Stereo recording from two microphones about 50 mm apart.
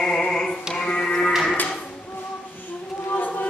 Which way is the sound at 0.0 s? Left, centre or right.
Centre.